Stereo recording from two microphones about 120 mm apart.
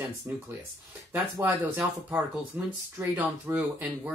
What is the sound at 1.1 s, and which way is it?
Speech, 15° right (ahead or behind).